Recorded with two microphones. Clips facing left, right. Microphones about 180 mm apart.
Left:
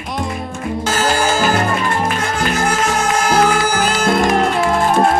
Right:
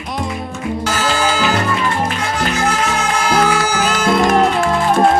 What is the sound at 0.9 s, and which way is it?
Music, 50° left (ahead or behind).